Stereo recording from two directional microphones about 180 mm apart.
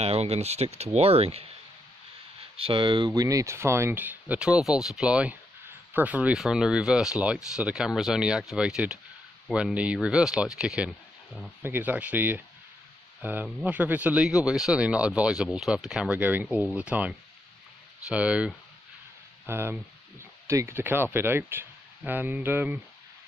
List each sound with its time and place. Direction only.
0.0 s speech: 35° right (ahead or behind)
2.5 s speech: 30° right (ahead or behind); by 17.1 s 5° right (ahead or behind)
18.1 s speech: 5° right (ahead or behind)